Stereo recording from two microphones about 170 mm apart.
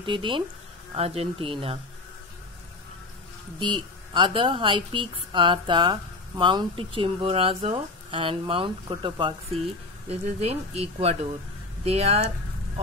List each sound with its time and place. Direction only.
0.0 s a woman's voice: 30° right (ahead or behind)
3.5 s a woman's voice: 30° right (ahead or behind)